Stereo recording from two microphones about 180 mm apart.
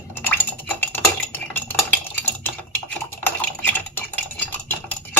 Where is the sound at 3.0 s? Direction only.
10° left (ahead or behind).